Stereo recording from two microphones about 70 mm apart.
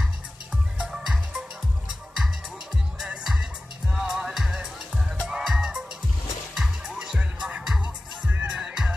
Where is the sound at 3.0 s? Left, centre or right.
Centre.